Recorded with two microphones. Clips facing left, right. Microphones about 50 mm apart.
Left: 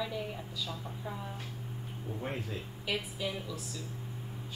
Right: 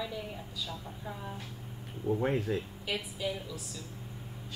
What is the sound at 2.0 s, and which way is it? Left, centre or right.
Speech, right.